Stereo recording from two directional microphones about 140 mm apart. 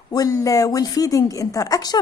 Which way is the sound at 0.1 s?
25° left (ahead or behind).